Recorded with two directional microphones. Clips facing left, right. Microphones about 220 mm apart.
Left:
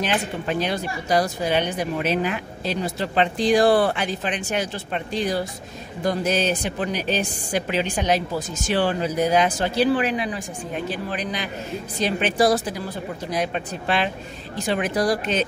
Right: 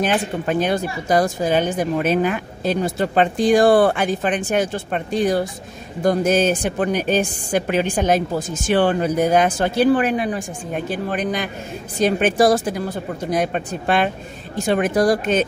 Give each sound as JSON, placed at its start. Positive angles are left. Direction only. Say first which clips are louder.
{"t": 0.0, "sound": "a woman's voice", "louder": "right 4 dB", "side_deg": -50}